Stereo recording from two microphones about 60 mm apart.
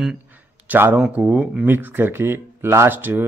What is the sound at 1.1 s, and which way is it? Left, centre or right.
Speech, right.